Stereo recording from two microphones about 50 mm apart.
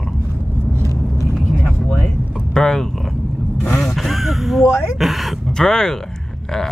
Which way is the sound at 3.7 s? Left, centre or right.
Centre.